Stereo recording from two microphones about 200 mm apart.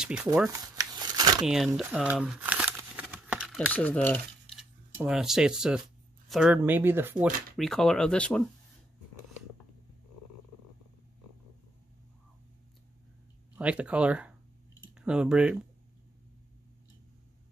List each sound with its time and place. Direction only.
0.0 s speech: 5° right (ahead or behind)
0.5 s shuffling cards: 20° right (ahead or behind)
1.4 s speech: centre (ahead or behind)
1.8 s crumpling: 5° right (ahead or behind)
4.6 s speech: 5° right (ahead or behind)
7.5 s speech: centre (ahead or behind)
13.6 s speech: 5° right (ahead or behind)